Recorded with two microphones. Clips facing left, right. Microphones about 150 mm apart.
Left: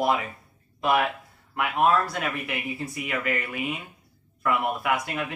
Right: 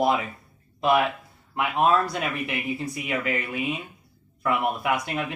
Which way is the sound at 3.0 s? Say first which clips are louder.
Right 1 dB; 25° right (ahead or behind).